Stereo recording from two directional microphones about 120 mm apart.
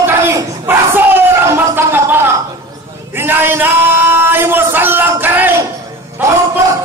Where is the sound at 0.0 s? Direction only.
20° right (ahead or behind).